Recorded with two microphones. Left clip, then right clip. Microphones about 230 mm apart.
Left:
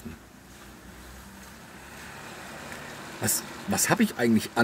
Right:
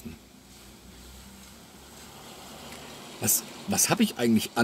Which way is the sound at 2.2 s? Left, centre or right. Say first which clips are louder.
Left 2 dB; left.